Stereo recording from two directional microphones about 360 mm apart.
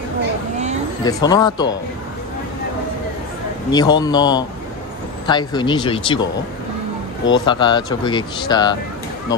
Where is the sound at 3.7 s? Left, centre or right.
Centre.